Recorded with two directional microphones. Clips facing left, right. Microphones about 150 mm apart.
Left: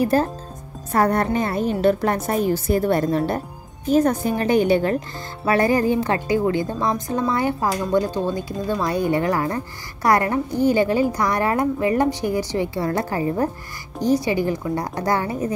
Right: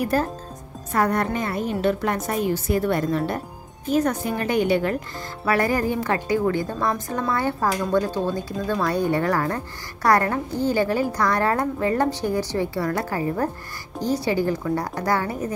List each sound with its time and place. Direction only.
0.0 s a woman's voice: 30° left (ahead or behind)